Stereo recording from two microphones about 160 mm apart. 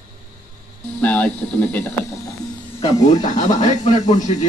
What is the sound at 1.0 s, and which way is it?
Speech, 10° left (ahead or behind).